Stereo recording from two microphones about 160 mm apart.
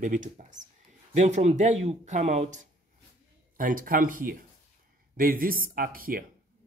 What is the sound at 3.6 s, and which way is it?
Speech, 60° right (ahead or behind).